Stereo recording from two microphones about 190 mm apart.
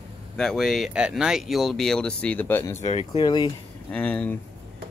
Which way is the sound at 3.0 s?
25° left (ahead or behind).